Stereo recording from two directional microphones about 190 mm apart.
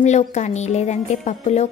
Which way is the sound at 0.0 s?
35° left (ahead or behind).